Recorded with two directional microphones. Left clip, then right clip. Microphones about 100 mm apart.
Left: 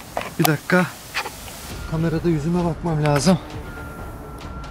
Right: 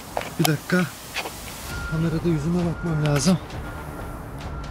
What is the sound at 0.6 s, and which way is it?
Speech, 25° left (ahead or behind).